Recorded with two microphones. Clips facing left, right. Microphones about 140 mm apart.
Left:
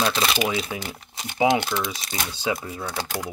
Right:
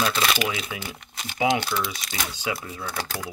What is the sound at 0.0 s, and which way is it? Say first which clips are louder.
Speech: left 1 dB; 35° left (ahead or behind).